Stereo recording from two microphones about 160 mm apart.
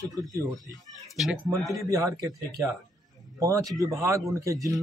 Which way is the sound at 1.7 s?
20° right (ahead or behind).